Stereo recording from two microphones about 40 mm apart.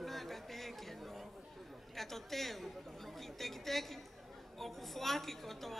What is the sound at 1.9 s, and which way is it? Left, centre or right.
A woman's voice, centre.